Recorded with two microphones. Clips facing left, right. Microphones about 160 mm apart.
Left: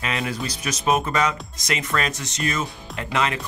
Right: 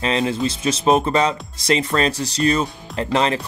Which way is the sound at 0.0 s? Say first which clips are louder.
Right 7 dB; 30° right (ahead or behind).